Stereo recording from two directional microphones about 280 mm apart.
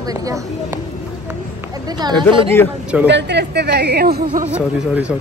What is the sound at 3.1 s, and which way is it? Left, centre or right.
Speech, right.